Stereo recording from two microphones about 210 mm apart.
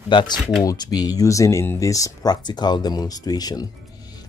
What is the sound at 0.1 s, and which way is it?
Speech, 20° left (ahead or behind).